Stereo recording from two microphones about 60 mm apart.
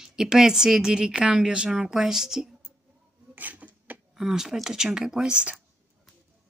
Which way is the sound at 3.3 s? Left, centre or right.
Right.